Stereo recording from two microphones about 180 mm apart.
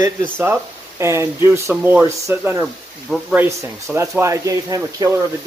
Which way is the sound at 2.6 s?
Centre (ahead or behind).